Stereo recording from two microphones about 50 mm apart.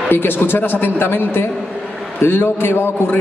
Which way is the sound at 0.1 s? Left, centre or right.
Left.